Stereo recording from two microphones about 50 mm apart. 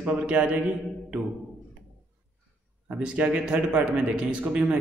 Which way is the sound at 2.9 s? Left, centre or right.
Right.